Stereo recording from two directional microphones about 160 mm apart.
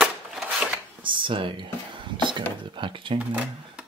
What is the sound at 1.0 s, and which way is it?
Speech, 30° right (ahead or behind).